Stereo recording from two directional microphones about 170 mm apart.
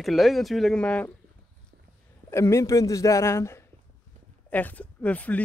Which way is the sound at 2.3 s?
15° left (ahead or behind).